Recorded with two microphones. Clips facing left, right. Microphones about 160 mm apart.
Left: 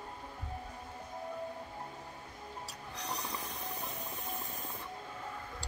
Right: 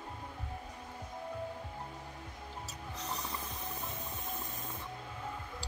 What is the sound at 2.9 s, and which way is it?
Music, 5° right (ahead or behind).